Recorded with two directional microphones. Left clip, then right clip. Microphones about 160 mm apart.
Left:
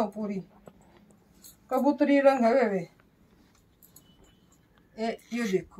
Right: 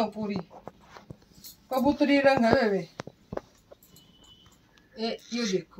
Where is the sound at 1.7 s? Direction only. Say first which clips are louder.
Even; centre (ahead or behind).